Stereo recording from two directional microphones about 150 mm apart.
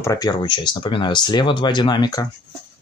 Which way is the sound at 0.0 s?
25° left (ahead or behind).